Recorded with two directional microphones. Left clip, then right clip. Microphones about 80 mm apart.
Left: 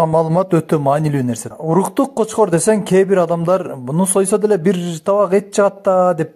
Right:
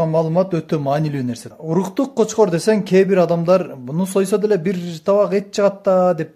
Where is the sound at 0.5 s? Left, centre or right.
Left.